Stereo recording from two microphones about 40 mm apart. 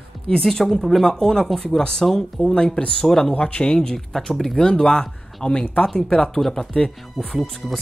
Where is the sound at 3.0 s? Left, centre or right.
Centre.